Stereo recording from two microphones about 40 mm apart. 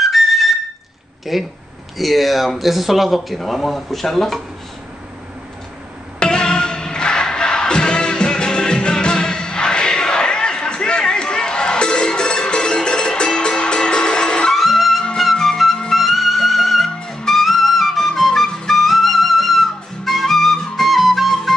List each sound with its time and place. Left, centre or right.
0.0 s flute: centre
1.3 s speech: centre
6.1 s music: left
14.5 s music: centre
17.0 s music: centre
17.3 s music: centre